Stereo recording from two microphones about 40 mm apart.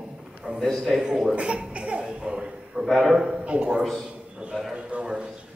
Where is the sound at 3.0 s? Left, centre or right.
Centre.